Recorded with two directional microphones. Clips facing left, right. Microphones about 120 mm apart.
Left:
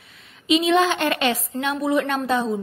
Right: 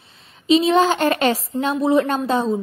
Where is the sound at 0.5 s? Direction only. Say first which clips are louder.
Right 3 dB; 35° right (ahead or behind).